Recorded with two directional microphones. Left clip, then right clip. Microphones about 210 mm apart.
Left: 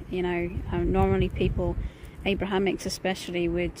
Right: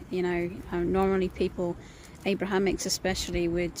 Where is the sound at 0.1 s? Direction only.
5° right (ahead or behind).